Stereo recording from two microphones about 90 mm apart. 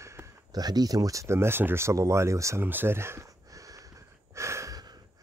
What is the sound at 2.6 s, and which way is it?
Gasp, 25° right (ahead or behind).